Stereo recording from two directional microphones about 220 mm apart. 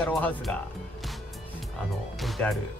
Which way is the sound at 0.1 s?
5° left (ahead or behind).